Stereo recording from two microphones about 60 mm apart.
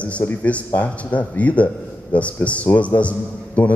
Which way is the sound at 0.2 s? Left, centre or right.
Left.